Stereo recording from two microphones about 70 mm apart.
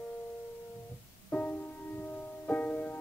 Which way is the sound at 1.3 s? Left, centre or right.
Left.